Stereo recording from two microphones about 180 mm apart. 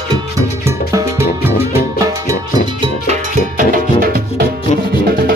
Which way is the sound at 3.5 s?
50° right (ahead or behind).